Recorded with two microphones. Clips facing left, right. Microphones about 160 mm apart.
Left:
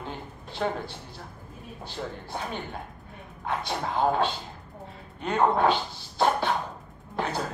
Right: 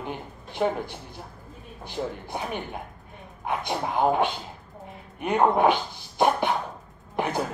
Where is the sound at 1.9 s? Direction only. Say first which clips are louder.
Right 5 dB; 15° right (ahead or behind).